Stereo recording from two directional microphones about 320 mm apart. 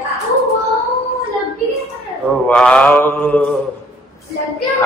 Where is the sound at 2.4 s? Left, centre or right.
Centre.